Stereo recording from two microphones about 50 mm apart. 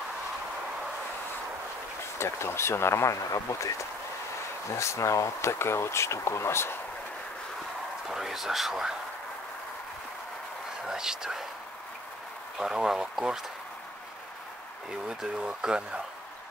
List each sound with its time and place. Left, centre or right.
2.1 s speech: left
4.7 s speech: left
8.1 s speech: centre
10.9 s speech: centre
12.5 s speech: centre
14.9 s speech: centre